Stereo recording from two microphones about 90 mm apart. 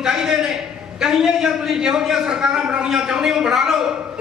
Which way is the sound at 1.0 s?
5° right (ahead or behind).